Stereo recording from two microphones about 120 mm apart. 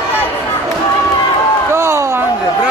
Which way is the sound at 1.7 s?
25° right (ahead or behind).